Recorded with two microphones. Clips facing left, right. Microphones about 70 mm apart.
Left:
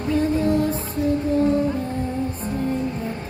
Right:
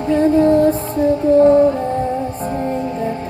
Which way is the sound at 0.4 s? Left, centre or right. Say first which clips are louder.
Right 9 dB; right.